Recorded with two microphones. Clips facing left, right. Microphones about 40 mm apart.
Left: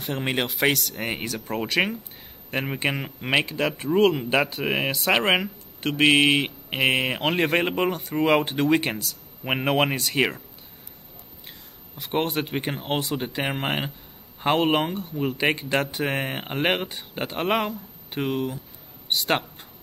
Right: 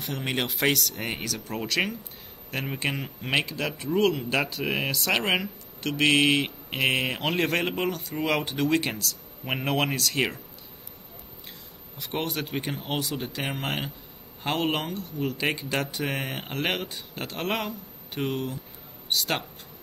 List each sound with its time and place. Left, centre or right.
0.1 s speech: left
0.4 s speech: centre
3.7 s speech: left
7.7 s speech: left
12.0 s speech: centre
15.8 s speech: centre
19.0 s speech: left